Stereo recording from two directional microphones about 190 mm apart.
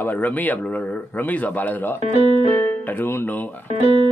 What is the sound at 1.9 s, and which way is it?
Speech, 35° right (ahead or behind).